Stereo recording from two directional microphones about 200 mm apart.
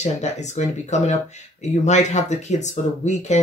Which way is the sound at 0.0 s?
35° left (ahead or behind).